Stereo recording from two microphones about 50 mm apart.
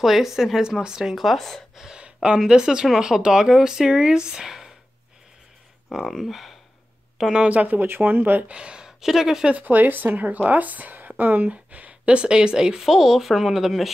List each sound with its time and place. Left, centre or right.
0.0 s speech: centre
1.1 s speech: centre
1.8 s speech: centre
6.0 s speech: centre
7.4 s a woman's voice: right
7.8 s speech: right; by 9.5 s centre
9.6 s a woman's voice: right
11.4 s speech: right; by 13.9 s centre